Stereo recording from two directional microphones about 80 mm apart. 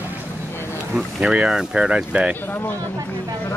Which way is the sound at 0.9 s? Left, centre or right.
Centre.